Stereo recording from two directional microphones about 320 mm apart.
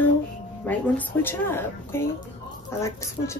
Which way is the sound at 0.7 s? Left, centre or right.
Centre.